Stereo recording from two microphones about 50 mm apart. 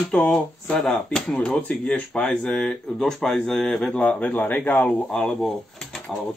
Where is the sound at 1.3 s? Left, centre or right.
Left.